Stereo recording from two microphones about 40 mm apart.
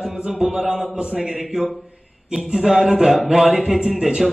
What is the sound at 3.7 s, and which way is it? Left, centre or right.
Speech, centre.